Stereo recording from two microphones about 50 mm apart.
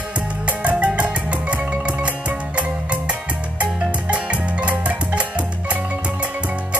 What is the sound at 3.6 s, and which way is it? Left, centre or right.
Music, right.